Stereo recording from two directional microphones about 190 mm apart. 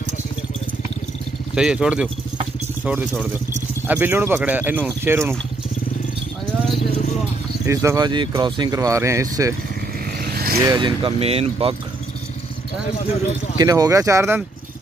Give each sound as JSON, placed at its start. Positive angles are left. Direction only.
{"t": 1.5, "sound": "speech", "side_deg": -5}
{"t": 7.6, "sound": "speech", "side_deg": -15}
{"t": 10.2, "sound": "vehicle", "side_deg": -55}
{"t": 10.6, "sound": "speech", "side_deg": -20}
{"t": 13.6, "sound": "speech", "side_deg": -20}